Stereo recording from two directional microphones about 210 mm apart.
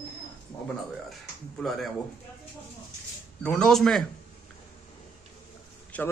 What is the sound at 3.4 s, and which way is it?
Speech, 5° left (ahead or behind).